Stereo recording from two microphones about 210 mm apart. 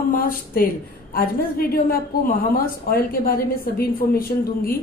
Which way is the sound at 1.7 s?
45° left (ahead or behind).